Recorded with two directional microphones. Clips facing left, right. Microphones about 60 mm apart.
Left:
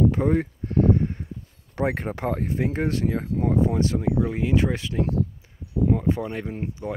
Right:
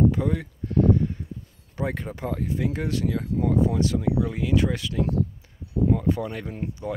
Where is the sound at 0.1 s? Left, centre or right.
Left.